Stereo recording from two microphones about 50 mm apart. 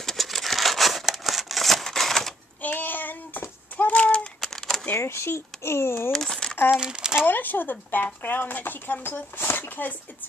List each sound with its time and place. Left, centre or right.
0.0 s a sound: centre
2.6 s child singing: left
4.4 s typewriter: centre
4.9 s speech: left
6.1 s speech: centre
6.8 s speech: centre
7.2 s speech: left